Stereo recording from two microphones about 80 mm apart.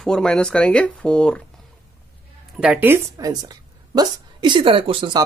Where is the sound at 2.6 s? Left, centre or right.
Centre.